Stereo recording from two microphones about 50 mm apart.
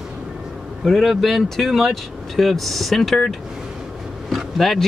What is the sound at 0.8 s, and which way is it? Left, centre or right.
Speech, centre.